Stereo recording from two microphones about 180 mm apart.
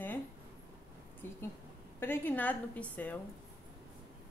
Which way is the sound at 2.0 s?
10° left (ahead or behind).